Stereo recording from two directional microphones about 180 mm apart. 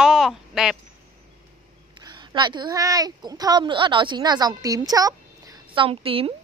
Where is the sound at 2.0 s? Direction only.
25° right (ahead or behind).